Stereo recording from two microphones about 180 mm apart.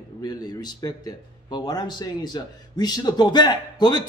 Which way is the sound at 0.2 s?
20° left (ahead or behind).